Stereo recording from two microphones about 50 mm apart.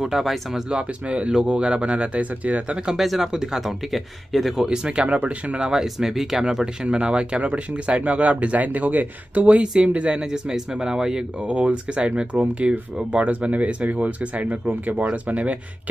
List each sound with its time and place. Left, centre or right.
0.0 s speech: centre
0.7 s speech: right
2.9 s speech: centre
4.6 s speech: right
5.7 s speech: centre
6.6 s speech: centre
11.4 s speech: right